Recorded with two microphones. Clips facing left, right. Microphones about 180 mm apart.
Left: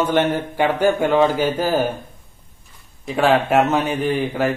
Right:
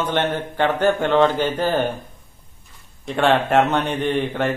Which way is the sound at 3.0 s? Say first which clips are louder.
Left 1 dB; 5° left (ahead or behind).